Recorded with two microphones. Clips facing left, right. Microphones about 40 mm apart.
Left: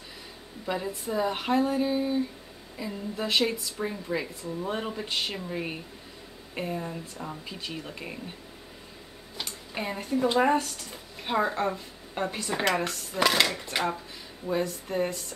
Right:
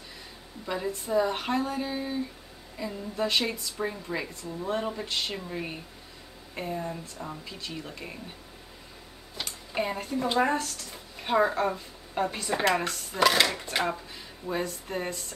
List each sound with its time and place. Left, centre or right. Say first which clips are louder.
0.7 s a woman's voice: even; centre
4.4 s speech: right 1 dB; centre
7.6 s speech: left 1 dB; centre
9.4 s a sound: right 3 dB; centre
10.1 s a woman's voice: left 3 dB; centre